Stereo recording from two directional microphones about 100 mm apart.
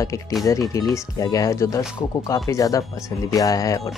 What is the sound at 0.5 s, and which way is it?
Speech, 35° left (ahead or behind).